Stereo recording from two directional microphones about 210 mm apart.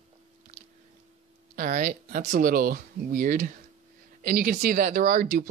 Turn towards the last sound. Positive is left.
turn(degrees=-40)  # may be behind; listen again after turning